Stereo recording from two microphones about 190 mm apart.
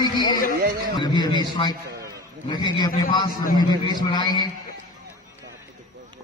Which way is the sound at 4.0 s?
25° left (ahead or behind).